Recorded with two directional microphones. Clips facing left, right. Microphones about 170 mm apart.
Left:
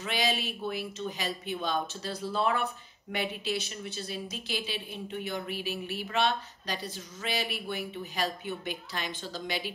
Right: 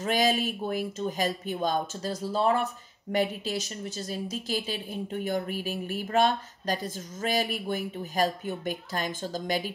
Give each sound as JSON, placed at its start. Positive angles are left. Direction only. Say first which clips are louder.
{"t": 0.0, "sound": "speech", "louder": "right 6 dB", "side_deg": -45}